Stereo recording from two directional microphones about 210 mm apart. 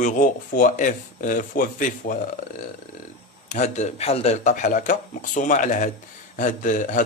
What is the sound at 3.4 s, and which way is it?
Speech, 35° left (ahead or behind).